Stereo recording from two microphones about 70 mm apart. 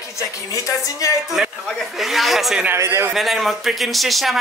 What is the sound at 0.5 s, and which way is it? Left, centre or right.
Speech, left.